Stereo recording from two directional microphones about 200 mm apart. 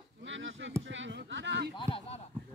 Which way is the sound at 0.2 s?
70° right (ahead or behind).